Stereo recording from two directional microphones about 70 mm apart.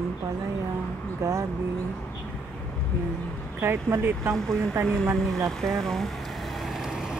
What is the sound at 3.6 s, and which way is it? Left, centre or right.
Speech, right.